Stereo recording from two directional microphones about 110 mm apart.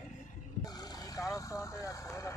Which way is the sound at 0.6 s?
35° left (ahead or behind).